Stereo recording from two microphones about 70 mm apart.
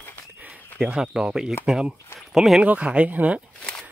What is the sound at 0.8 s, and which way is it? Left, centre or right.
Speech, centre.